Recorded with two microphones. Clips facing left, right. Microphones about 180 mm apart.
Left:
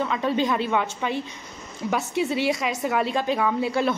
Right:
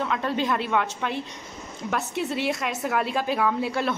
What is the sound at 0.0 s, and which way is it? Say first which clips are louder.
A woman's voice: left 2 dB; centre (ahead or behind).